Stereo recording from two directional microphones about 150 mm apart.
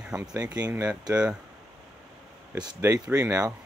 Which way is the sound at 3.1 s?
20° right (ahead or behind).